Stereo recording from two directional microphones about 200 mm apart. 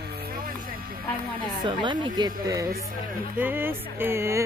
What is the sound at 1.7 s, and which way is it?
Speech, 25° right (ahead or behind).